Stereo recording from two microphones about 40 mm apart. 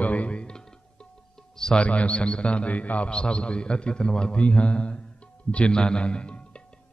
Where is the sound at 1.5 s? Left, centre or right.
Centre.